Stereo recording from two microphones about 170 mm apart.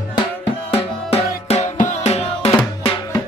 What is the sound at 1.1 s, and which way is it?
Music, 40° left (ahead or behind).